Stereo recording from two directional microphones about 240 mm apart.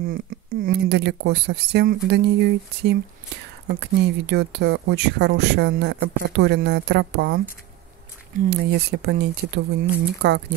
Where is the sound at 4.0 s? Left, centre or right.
Right.